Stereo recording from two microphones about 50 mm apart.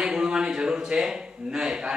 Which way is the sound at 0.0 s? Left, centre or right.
Centre.